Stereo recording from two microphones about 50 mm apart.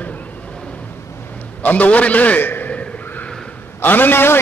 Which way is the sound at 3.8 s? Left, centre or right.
Left.